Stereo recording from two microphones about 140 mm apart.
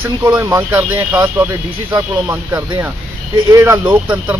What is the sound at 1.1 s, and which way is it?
Speech, 20° right (ahead or behind).